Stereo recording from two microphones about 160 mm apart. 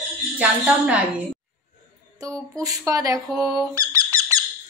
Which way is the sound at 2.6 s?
20° right (ahead or behind).